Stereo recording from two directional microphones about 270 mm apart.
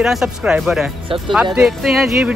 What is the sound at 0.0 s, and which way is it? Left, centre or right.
Speech, centre.